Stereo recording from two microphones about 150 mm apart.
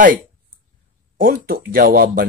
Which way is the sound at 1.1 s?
85° right.